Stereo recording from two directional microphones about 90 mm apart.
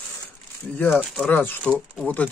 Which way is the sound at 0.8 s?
15° left (ahead or behind).